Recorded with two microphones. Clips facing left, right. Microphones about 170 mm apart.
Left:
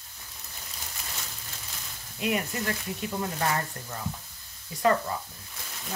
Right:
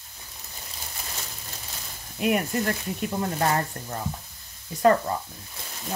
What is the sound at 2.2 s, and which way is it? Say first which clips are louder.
Speech: right 5 dB; 55° right (ahead or behind).